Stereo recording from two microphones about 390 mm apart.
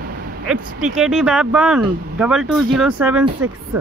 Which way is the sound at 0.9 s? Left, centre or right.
Centre.